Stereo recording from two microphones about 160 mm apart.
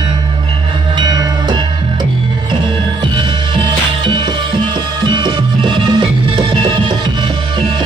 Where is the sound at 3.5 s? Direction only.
30° right (ahead or behind).